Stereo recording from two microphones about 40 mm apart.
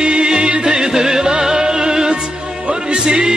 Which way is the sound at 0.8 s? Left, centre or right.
Centre.